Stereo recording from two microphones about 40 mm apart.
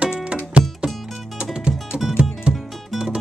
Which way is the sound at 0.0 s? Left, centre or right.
Right.